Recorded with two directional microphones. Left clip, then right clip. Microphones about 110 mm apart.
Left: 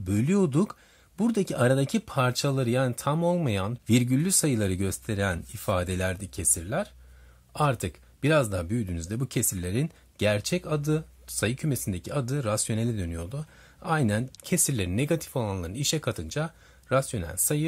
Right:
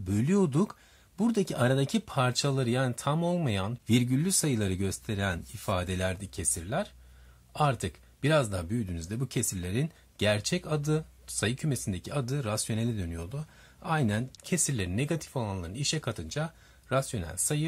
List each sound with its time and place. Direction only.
0.0 s speech: 30° left (ahead or behind)